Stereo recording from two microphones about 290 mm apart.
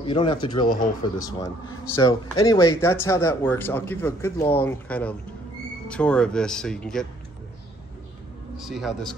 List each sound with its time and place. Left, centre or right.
0.0 s speech: centre
8.5 s speech: centre